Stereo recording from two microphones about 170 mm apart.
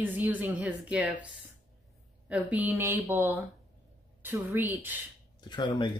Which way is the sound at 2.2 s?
10° right (ahead or behind).